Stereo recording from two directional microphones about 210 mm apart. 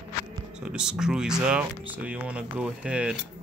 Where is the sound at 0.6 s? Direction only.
5° right (ahead or behind).